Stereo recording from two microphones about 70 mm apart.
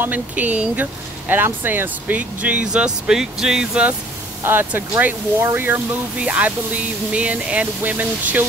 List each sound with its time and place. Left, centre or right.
0.0 s speech: right
4.5 s speech: right
6.1 s speech: right